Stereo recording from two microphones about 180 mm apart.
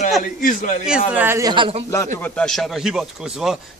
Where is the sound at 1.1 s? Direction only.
15° right (ahead or behind).